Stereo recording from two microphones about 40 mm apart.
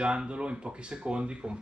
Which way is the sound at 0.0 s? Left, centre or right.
Right.